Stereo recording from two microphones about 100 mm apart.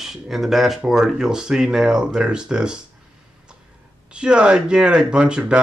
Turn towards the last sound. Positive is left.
turn(degrees=-10)  # may be behind; listen again after turning